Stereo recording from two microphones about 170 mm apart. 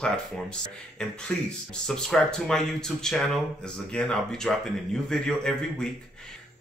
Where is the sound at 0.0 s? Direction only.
5° left (ahead or behind).